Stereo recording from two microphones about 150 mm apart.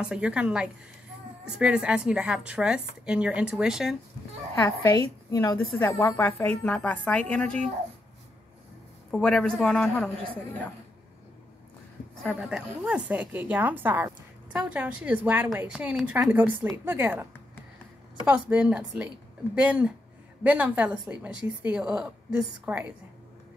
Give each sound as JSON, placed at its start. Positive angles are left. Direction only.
{"t": 0.0, "sound": "a man's voice", "side_deg": -5}
{"t": 4.6, "sound": "a woman's voice", "side_deg": 20}
{"t": 5.8, "sound": "a woman's voice", "side_deg": 15}
{"t": 9.1, "sound": "a man's voice", "side_deg": 5}
{"t": 12.2, "sound": "a woman's voice", "side_deg": -5}